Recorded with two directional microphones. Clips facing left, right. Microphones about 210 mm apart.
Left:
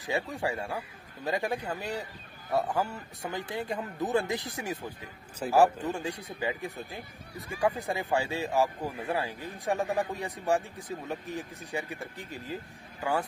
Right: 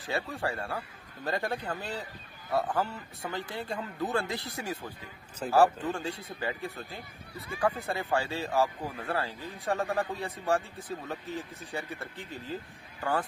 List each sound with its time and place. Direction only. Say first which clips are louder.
0.0 s speech: left 2 dB; 15° left (ahead or behind)